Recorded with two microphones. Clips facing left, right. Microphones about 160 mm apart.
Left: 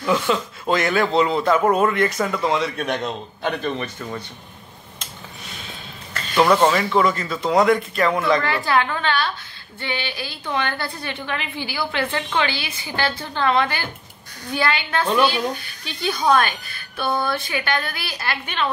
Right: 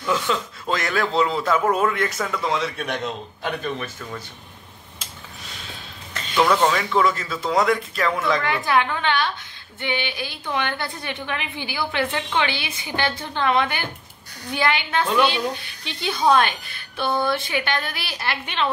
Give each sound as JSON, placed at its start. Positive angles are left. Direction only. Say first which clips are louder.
{"t": 0.0, "sound": "a man's voice", "louder": "left 3 dB", "side_deg": 5}
{"t": 6.3, "sound": "a man's voice", "louder": "left 3 dB", "side_deg": 5}
{"t": 8.5, "sound": "a woman's voice", "louder": "left 1 dB", "side_deg": -15}
{"t": 17.0, "sound": "a man's voice", "louder": "even", "side_deg": 5}
{"t": 17.3, "sound": "a woman's voice", "louder": "even", "side_deg": -25}